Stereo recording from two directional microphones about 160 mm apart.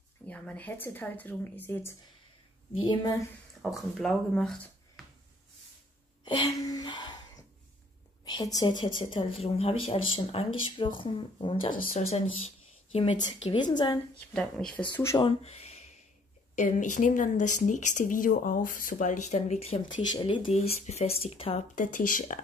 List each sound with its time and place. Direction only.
0.3 s speech: 10° left (ahead or behind)
3.6 s speech: centre (ahead or behind)
6.2 s a sound: 25° left (ahead or behind)
8.3 s a woman's voice: 25° left (ahead or behind)
13.9 s speech: 5° left (ahead or behind)
15.1 s a sound: 35° left (ahead or behind)
16.5 s speech: 50° left (ahead or behind)
19.9 s speech: 30° left (ahead or behind)
21.7 s speech: 55° left (ahead or behind)